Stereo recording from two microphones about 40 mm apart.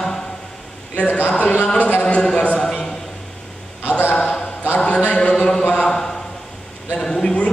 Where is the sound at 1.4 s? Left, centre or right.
Left.